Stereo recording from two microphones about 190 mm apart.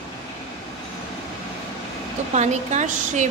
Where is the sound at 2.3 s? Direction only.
35° right (ahead or behind).